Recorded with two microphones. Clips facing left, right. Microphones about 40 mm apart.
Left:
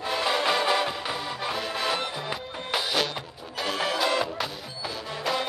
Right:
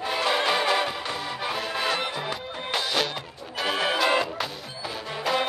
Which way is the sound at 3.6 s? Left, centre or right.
Centre.